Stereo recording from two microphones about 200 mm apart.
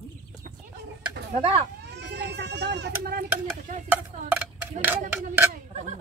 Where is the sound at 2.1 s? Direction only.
55° right (ahead or behind).